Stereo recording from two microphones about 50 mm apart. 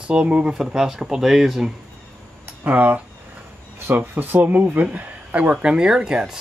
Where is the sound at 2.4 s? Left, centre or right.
Right.